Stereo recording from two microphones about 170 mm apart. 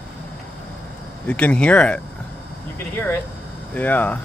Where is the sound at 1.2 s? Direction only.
10° left (ahead or behind).